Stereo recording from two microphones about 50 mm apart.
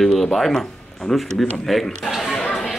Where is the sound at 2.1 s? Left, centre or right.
Centre.